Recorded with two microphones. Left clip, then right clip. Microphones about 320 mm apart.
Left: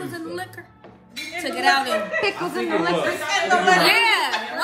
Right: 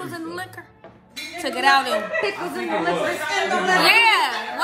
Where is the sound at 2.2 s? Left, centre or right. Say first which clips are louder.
Left 1 dB; left.